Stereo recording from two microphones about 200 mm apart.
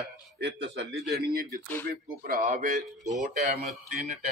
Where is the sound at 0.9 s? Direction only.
Centre (ahead or behind).